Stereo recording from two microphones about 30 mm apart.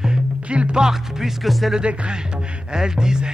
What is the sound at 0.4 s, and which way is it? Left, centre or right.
Music, right.